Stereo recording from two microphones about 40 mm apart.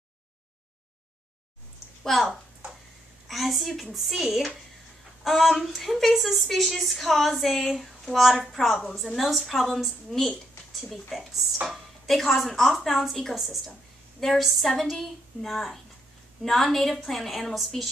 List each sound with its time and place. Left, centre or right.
2.0 s a woman's voice: centre
11.6 s a sound: centre
12.2 s a woman's voice: centre